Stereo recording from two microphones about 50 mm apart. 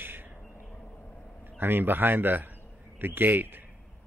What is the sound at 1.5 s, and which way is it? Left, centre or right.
A man's voice, right.